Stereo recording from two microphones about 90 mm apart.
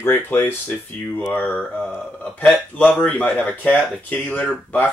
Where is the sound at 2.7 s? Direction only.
15° left (ahead or behind).